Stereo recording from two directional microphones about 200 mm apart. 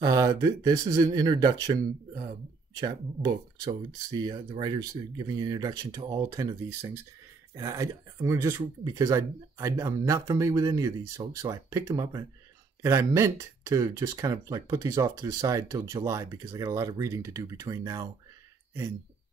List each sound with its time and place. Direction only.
0.0 s speech: 20° right (ahead or behind)